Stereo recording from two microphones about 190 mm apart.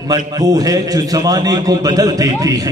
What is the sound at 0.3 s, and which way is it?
A man's voice, 20° right (ahead or behind).